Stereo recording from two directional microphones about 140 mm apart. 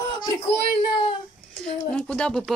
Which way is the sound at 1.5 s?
5° left (ahead or behind).